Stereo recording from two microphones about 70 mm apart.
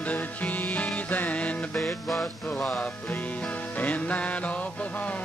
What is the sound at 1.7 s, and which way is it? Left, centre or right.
Music, centre.